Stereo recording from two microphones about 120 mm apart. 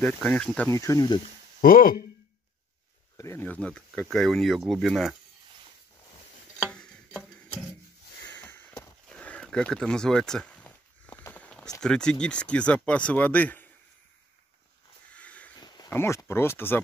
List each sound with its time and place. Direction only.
0.0 s speech: 10° left (ahead or behind)
0.7 s speech: 25° left (ahead or behind)
3.2 s speech: 25° left (ahead or behind)
3.4 s speech: 10° left (ahead or behind)
6.6 s tick-tock: 5° left (ahead or behind)
8.4 s sniff: 15° left (ahead or behind)
9.1 s a sound: 10° left (ahead or behind)
11.8 s speech: 5° left (ahead or behind)
15.1 s a sound: 10° left (ahead or behind)
15.5 s a sound: 35° left (ahead or behind)
15.9 s speech: 20° left (ahead or behind)